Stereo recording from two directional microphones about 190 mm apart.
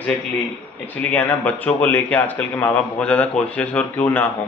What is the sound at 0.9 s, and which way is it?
Speech, 10° left (ahead or behind).